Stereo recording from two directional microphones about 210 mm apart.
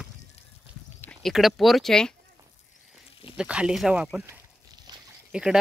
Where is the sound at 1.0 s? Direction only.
5° left (ahead or behind).